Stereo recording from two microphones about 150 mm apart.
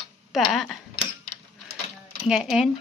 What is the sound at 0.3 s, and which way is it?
Speech, centre (ahead or behind).